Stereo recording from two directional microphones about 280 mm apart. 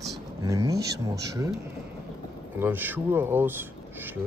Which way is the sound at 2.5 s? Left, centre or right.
Centre.